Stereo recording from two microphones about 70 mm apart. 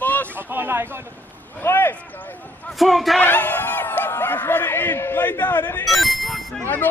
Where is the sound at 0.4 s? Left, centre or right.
Right.